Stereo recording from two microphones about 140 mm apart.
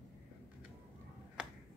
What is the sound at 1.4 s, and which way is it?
Finger snapping, 5° right (ahead or behind).